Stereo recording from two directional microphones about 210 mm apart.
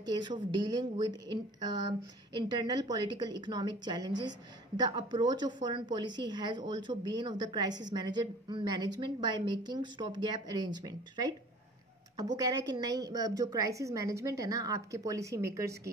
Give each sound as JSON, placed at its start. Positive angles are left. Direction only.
{"t": 0.0, "sound": "a woman's voice", "side_deg": -20}
{"t": 12.4, "sound": "a woman's voice", "side_deg": -20}